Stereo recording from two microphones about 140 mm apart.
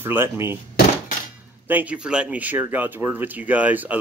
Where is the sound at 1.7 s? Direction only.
10° right (ahead or behind).